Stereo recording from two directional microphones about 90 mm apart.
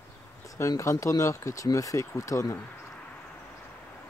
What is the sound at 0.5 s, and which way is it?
Speech, 35° left (ahead or behind).